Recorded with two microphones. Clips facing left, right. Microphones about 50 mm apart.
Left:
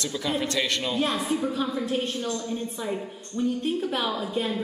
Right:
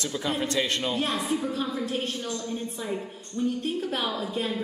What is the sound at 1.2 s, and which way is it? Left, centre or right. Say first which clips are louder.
Speech: left 1 dB; centre.